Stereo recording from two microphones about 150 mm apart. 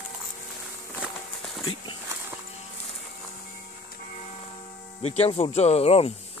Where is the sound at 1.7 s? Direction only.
30° left (ahead or behind).